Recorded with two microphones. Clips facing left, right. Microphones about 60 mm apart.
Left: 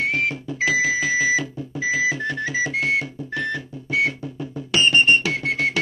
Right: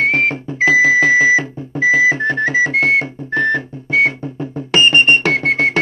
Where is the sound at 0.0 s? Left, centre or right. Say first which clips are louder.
Right 7 dB; right.